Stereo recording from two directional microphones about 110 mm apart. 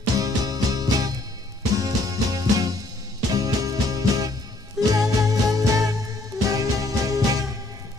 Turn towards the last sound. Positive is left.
turn(degrees=-35)  # may be behind; listen again after turning